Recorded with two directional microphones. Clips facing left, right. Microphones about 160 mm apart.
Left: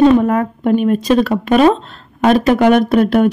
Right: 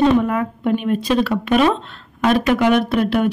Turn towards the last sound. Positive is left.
turn(degrees=45)  # may be behind; listen again after turning